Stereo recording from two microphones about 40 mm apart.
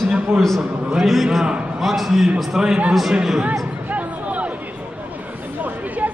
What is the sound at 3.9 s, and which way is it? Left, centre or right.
Music, right.